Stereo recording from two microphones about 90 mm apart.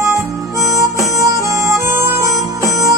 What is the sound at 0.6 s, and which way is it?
Harmonica, 35° right (ahead or behind).